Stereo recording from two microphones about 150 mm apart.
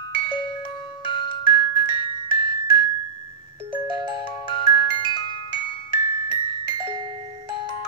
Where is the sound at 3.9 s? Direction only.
30° right (ahead or behind).